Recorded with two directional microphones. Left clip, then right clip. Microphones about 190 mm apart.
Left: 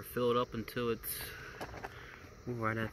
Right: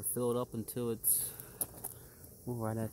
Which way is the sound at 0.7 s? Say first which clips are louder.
Left 2 dB; centre (ahead or behind).